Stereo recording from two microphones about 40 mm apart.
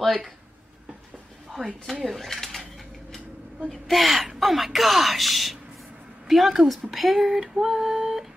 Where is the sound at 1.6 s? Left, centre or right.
Left.